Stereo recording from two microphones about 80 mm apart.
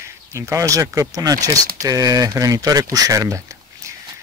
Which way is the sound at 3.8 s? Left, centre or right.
Right.